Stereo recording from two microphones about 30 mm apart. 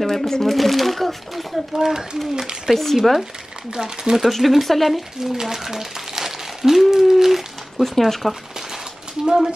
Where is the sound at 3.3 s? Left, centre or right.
Right.